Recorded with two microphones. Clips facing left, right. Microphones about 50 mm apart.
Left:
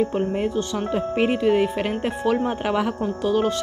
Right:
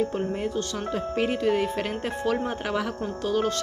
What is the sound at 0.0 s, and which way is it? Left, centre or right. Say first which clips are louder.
Speech: left 4 dB; left.